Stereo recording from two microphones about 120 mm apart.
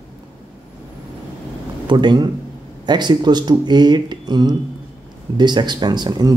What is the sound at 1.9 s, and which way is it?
Speech, 40° right (ahead or behind).